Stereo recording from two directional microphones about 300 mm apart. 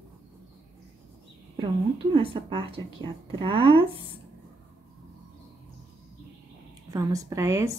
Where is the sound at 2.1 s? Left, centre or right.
Centre.